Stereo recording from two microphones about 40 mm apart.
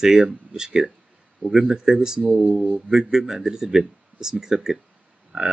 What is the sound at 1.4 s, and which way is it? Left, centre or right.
Speech, centre.